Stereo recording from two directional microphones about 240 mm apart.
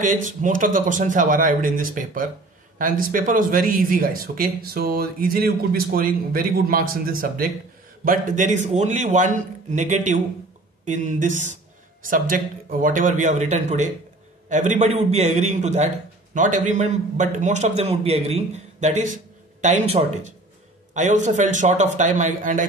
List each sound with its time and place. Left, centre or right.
0.4 s a man's voice: right